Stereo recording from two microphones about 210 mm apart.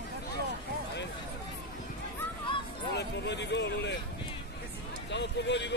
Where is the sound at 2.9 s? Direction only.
55° left (ahead or behind).